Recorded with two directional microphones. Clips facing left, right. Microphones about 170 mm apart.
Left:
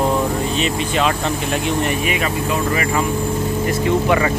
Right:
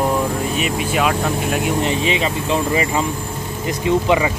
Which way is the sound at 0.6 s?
10° right (ahead or behind).